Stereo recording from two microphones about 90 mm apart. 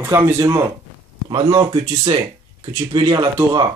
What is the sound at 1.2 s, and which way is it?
Speech, 55° right (ahead or behind).